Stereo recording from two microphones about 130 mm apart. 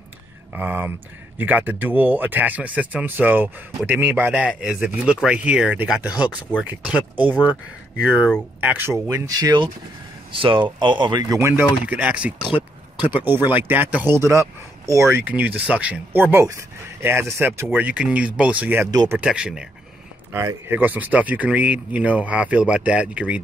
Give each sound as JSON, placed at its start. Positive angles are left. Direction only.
{"t": 0.6, "sound": "speech", "side_deg": -15}
{"t": 18.9, "sound": "speech", "side_deg": -30}
{"t": 19.1, "sound": "speech", "side_deg": -10}
{"t": 20.3, "sound": "speech", "side_deg": -20}